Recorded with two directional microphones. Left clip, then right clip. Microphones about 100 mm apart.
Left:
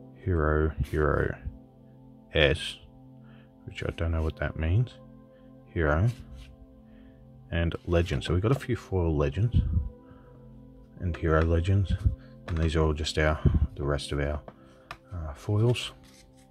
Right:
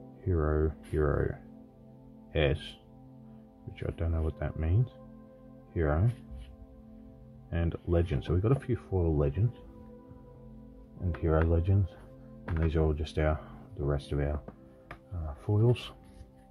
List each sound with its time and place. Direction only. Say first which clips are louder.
0.2 s speech: left 4 dB; 40° left (ahead or behind)
7.4 s speech: left 4 dB; 35° left (ahead or behind)
11.2 s speech: left 3 dB; 40° left (ahead or behind); by 15.9 s 20° left (ahead or behind)